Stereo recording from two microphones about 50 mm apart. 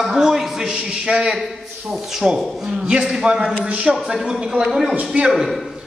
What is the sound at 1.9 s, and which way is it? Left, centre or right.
A man's voice, centre.